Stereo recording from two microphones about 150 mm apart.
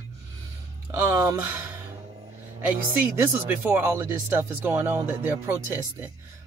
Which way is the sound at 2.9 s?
15° right (ahead or behind).